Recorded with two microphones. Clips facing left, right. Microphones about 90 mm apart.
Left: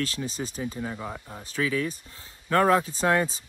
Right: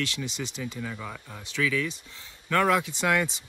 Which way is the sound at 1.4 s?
35° left (ahead or behind).